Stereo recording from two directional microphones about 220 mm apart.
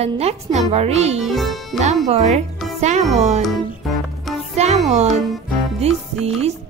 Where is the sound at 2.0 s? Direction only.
30° right (ahead or behind).